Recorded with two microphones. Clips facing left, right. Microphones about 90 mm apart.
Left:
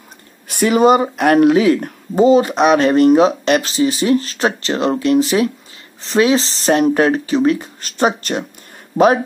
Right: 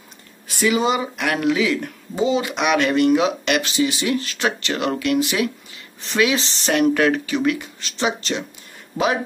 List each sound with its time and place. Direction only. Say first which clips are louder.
0.5 s speech: left 7 dB; 55° left (ahead or behind)